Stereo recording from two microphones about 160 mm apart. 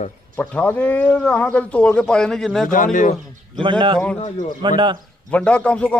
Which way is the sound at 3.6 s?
30° right (ahead or behind).